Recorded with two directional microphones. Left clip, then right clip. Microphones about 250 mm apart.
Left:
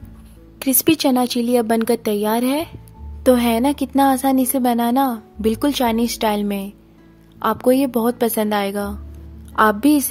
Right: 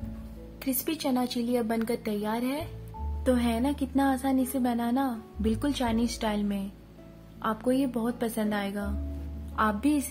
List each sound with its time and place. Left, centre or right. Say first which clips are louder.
0.6 s a woman's voice: left 14 dB; left